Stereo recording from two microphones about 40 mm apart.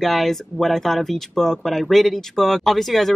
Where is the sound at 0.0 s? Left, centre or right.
Centre.